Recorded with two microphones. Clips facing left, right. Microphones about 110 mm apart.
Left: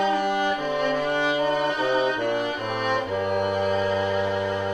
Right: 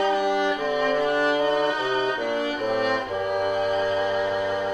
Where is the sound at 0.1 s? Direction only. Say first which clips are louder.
Right 1 dB; centre (ahead or behind).